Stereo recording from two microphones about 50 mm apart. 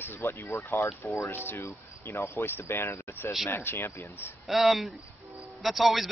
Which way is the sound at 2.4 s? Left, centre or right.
Left.